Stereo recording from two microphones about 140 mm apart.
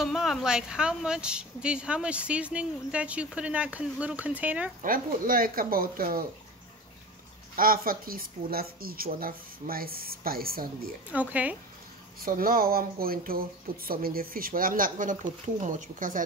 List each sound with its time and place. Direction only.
0.0 s a woman's voice: centre (ahead or behind)
4.8 s speech: 85° right
7.5 s speech: 90° right
11.1 s a woman's voice: 10° right (ahead or behind)
12.2 s speech: 90° right; by 16.2 s 70° right (ahead or behind)